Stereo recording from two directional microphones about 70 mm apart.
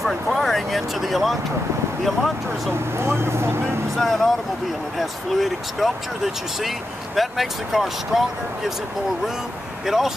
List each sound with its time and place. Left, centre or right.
0.0 s speech: centre
3.0 s speech: right
3.9 s speech: centre
9.8 s speech: centre